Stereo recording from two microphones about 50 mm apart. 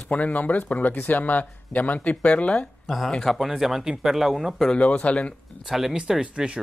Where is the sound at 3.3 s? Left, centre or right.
Centre.